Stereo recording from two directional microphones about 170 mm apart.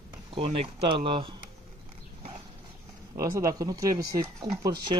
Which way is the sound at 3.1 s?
20° right (ahead or behind).